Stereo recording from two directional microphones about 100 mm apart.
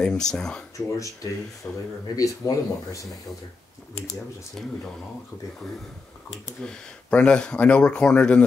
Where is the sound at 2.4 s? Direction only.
35° left (ahead or behind).